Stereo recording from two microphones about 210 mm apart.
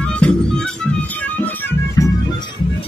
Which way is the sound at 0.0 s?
5° left (ahead or behind).